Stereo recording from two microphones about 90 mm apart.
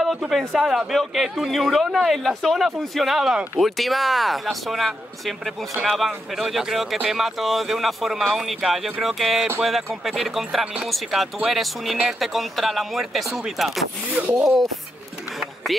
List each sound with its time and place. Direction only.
0.0 s speech: 5° right (ahead or behind)
14.1 s speech: 20° right (ahead or behind)